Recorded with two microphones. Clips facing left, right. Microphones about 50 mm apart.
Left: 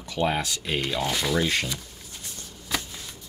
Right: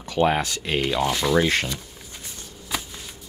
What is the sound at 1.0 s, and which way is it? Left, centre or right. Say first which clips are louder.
Rub: right 4 dB; centre.